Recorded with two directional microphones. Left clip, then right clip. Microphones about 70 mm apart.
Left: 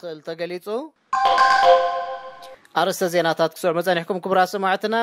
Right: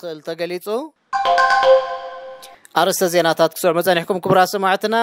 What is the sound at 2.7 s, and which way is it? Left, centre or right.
Speech, right.